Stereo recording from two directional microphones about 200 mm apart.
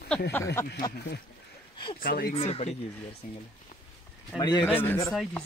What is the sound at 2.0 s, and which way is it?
Speech, 45° left (ahead or behind).